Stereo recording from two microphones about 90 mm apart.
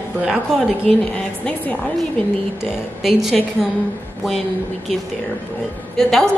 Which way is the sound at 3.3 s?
5° left (ahead or behind).